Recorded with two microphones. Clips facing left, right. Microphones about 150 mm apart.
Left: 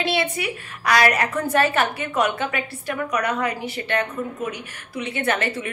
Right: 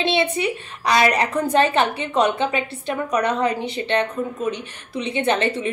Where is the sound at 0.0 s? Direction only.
25° right (ahead or behind).